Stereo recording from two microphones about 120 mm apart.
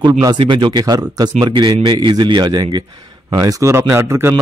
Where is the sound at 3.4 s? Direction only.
25° right (ahead or behind).